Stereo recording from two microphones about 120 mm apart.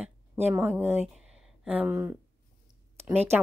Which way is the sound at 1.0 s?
5° right (ahead or behind).